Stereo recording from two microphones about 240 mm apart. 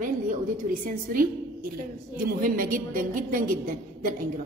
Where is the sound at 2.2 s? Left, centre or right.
Right.